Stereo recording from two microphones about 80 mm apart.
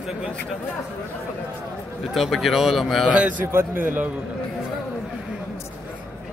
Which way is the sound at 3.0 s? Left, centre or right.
Centre.